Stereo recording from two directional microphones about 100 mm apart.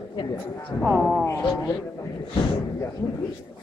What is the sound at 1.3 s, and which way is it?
Speech, 20° left (ahead or behind).